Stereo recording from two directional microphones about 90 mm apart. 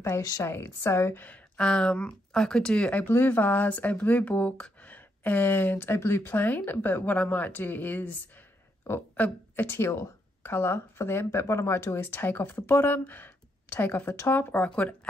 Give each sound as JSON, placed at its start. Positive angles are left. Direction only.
{"t": 0.0, "sound": "a woman's voice", "side_deg": 35}